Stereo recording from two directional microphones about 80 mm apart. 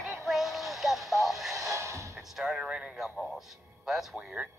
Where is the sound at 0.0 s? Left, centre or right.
Centre.